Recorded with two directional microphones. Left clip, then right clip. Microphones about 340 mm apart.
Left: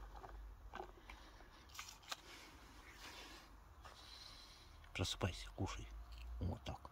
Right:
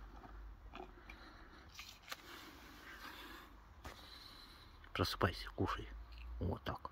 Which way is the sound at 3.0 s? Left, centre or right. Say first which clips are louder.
Right 1 dB; centre.